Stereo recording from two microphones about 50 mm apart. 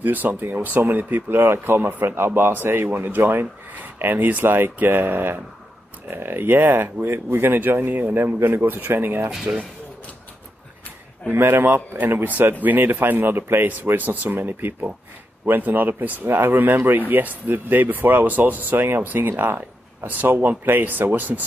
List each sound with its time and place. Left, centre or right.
0.0 s speech: right
1.3 s speech: right
1.8 s speech: right
2.0 s speech: right
11.2 s speech: right
14.3 s speech: right
20.1 s speech: right